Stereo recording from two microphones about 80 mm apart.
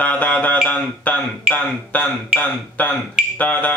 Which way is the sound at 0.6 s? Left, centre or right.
Left.